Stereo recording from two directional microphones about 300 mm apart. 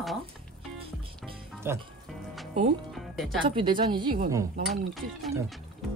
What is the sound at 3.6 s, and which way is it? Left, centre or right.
Speech, centre.